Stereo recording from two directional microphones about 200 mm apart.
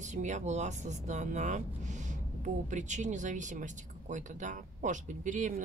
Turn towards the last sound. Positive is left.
turn(degrees=-40)  # may be behind; listen again after turning